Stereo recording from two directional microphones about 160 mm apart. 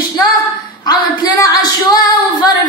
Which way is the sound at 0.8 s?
25° left (ahead or behind).